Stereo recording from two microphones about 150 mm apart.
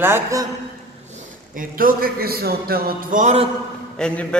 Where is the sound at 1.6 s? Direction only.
75° right (ahead or behind).